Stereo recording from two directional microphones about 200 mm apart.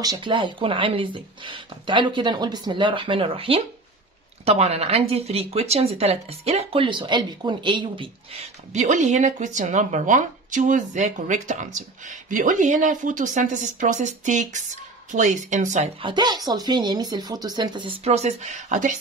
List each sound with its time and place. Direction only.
0.0 s a woman's voice: 20° right (ahead or behind); by 18.9 s 40° right (ahead or behind)